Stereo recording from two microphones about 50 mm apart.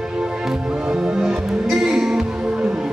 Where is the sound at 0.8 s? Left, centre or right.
Centre.